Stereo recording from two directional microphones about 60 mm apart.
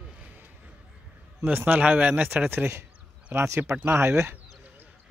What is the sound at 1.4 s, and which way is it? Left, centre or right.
Speech, right.